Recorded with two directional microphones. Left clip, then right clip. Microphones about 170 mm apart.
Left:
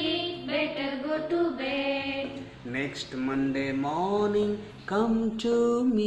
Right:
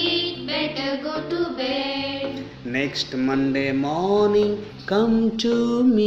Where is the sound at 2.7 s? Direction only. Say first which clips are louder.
Right 8 dB; 20° right (ahead or behind).